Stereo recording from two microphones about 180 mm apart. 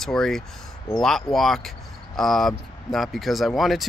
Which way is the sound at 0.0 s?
Centre (ahead or behind).